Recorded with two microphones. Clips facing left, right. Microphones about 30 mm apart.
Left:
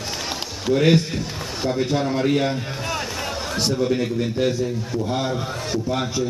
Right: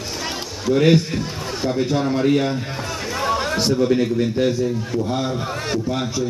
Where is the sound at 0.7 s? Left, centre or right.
Centre.